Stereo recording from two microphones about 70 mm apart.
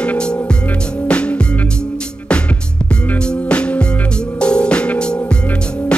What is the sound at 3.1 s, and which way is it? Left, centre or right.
Music, centre.